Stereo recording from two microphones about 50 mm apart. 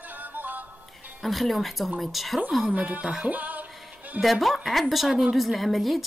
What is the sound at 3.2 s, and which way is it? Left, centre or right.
Music, right.